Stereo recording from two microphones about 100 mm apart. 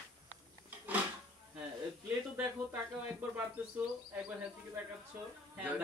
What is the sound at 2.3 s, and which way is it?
Speech, 15° right (ahead or behind).